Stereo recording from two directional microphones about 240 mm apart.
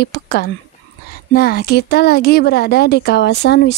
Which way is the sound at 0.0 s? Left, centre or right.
Left.